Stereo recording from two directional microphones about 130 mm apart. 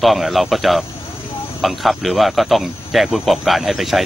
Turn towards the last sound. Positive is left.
turn(degrees=0)  # may be behind; listen again after turning